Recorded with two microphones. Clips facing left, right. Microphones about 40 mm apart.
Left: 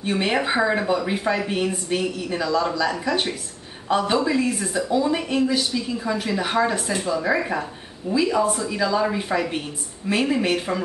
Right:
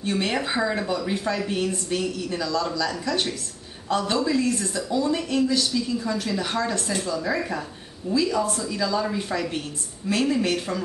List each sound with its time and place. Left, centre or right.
0.0 s a woman's voice: centre